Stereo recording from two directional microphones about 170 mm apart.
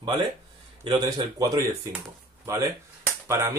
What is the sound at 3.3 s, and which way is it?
Speech, 15° right (ahead or behind).